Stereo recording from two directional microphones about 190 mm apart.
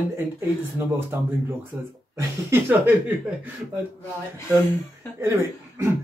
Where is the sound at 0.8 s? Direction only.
15° right (ahead or behind).